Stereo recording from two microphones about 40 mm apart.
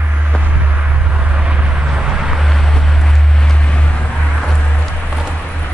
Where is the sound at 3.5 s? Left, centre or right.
Left.